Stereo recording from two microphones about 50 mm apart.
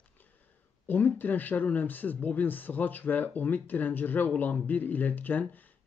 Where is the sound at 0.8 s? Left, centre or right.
Left.